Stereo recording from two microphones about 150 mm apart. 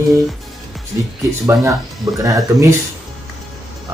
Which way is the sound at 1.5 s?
20° right (ahead or behind).